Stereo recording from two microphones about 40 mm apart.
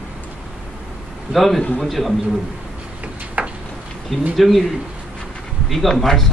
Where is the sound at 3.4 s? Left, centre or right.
Right.